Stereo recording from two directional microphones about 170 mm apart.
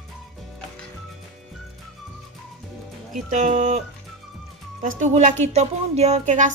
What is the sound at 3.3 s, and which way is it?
Speech, 45° right (ahead or behind).